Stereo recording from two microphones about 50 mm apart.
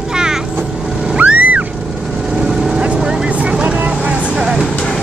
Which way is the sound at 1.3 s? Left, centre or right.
Right.